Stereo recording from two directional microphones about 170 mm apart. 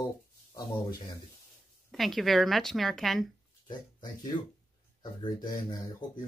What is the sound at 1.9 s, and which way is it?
Speech, centre (ahead or behind).